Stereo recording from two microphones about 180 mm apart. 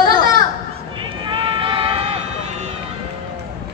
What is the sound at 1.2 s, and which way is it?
Run, 30° right (ahead or behind).